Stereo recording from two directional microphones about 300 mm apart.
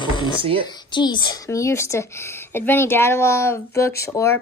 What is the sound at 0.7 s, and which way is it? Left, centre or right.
Speech, centre.